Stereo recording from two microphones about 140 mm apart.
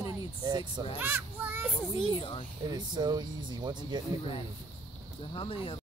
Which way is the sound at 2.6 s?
30° right (ahead or behind).